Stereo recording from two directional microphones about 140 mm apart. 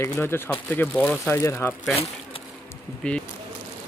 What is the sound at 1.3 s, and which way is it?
Speech, 20° left (ahead or behind).